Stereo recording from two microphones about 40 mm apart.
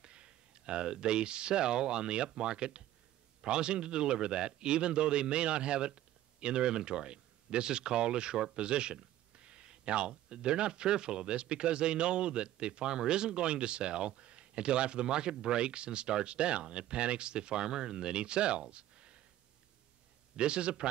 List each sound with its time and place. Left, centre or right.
0.0 s speech: right
20.3 s speech: right